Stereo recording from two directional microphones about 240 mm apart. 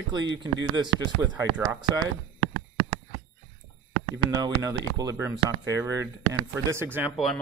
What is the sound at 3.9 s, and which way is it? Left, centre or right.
A man's voice, centre.